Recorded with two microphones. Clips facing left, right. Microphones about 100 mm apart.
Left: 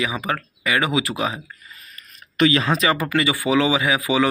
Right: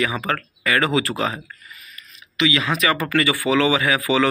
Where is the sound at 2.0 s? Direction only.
50° left (ahead or behind); by 2.9 s 30° left (ahead or behind).